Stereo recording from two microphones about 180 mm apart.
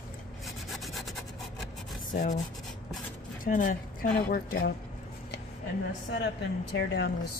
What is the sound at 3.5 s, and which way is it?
Speech, 50° left (ahead or behind).